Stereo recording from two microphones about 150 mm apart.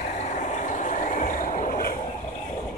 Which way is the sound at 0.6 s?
60° left (ahead or behind).